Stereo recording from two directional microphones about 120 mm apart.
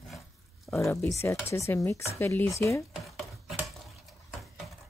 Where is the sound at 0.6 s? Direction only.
25° left (ahead or behind).